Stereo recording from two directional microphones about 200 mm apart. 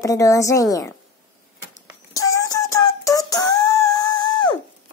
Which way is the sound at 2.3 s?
15° left (ahead or behind).